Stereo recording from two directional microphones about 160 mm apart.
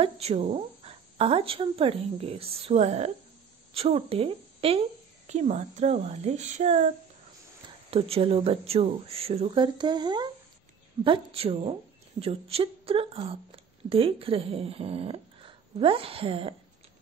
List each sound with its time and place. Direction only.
0.0 s a woman's voice: 40° right (ahead or behind)
7.9 s a woman's voice: 35° right (ahead or behind)